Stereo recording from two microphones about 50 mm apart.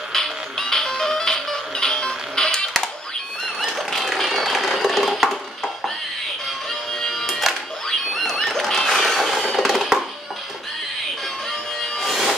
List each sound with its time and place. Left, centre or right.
0.1 s music: centre
3.6 s a sound: centre
6.9 s music: centre
7.9 s a sound: centre
9.6 s music: centre
11.8 s music: centre